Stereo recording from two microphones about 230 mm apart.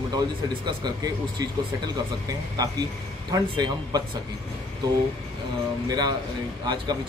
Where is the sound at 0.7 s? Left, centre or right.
Centre.